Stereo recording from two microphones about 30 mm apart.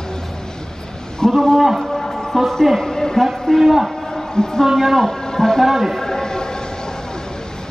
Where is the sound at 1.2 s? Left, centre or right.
Centre.